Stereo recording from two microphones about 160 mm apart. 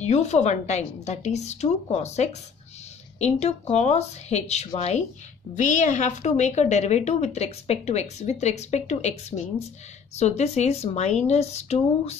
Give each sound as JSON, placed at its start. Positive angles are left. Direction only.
{"t": 0.0, "sound": "a woman's voice", "side_deg": 45}